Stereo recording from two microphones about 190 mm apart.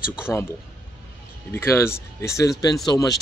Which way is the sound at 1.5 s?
10° left (ahead or behind).